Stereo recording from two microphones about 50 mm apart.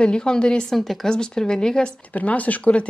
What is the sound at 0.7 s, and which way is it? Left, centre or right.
Speech, centre.